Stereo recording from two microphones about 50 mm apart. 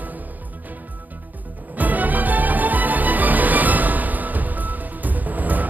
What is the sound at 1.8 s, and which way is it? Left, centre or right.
Music, right.